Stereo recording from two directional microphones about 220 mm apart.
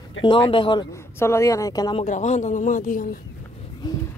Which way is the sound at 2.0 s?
35° left (ahead or behind).